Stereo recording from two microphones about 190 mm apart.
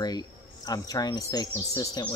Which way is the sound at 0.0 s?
20° left (ahead or behind).